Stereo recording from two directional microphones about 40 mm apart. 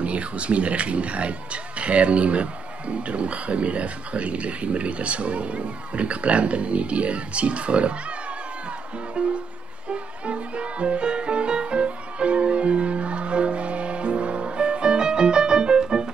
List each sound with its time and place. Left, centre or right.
0.0 s speech: right
9.2 s music: right